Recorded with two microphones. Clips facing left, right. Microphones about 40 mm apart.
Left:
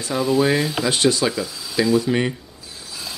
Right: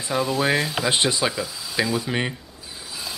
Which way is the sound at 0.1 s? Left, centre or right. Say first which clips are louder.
Left 3 dB; centre.